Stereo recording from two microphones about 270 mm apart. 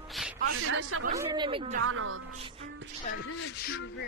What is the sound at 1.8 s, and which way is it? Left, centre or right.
Speech, right.